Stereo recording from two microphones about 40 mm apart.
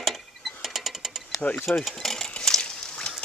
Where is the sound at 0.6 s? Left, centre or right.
Centre.